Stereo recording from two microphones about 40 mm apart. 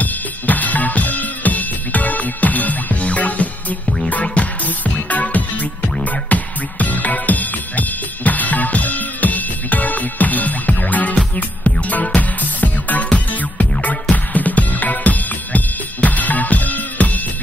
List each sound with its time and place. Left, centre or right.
0.0 s music: left